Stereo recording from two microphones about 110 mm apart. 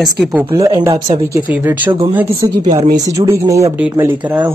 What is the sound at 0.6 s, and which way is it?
Speech, 30° right (ahead or behind).